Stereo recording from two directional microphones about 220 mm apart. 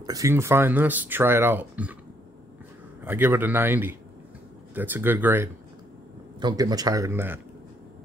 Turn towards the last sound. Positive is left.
turn(degrees=-10)  # may be behind; listen again after turning